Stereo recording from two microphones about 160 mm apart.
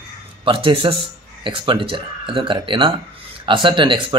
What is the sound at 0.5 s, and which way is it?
Speech, 35° right (ahead or behind).